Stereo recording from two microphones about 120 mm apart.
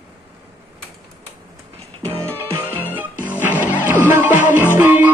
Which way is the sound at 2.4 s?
20° right (ahead or behind).